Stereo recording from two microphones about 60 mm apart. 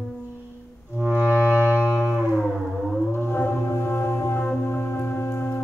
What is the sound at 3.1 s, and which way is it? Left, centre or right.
Music, left.